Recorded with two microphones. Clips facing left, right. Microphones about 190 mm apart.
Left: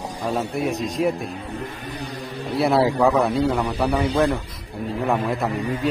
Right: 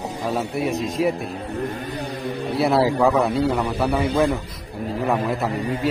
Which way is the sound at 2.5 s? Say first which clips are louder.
Even; centre (ahead or behind).